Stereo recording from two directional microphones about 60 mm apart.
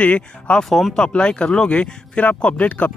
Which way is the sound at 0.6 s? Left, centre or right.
Centre.